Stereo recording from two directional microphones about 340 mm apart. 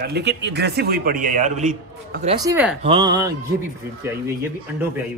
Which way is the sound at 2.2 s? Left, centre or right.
Centre.